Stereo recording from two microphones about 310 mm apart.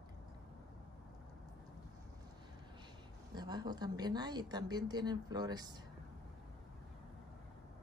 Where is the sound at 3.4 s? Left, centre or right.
Centre.